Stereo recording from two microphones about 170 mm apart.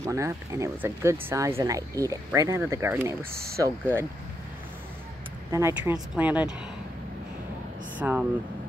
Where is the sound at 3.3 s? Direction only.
65° right (ahead or behind).